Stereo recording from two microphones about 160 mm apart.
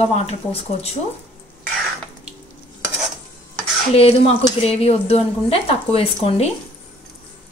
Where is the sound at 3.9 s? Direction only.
35° left (ahead or behind).